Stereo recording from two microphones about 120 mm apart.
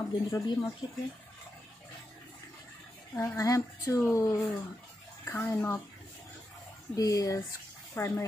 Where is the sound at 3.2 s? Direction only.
25° left (ahead or behind).